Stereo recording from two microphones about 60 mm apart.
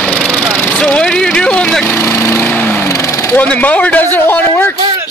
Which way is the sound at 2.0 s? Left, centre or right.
Left.